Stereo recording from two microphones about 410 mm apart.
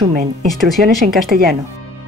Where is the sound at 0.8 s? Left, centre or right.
Right.